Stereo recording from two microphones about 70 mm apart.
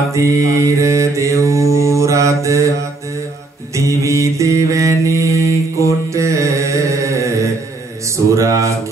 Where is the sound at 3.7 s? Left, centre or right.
Right.